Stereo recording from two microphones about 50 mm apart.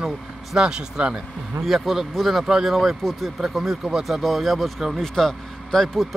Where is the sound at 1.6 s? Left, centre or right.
Centre.